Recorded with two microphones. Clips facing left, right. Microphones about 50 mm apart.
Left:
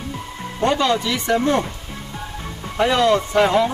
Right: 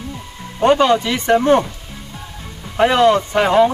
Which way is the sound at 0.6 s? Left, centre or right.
Right.